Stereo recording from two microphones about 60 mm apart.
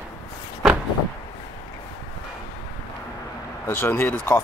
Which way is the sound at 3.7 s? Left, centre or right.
Left.